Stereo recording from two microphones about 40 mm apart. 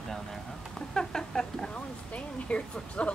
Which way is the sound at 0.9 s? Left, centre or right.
Centre.